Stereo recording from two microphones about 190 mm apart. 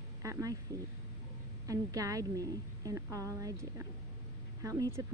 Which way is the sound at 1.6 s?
15° right (ahead or behind).